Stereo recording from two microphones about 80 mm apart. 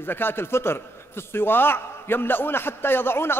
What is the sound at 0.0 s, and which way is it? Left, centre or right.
A man's voice, left.